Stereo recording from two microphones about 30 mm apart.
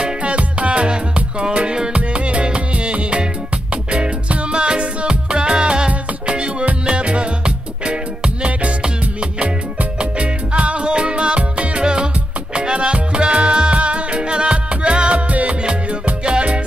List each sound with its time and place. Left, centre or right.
0.2 s music: right
0.8 s music: right
1.9 s music: right
4.5 s music: right
9.9 s music: right
10.9 s music: right
11.8 s music: right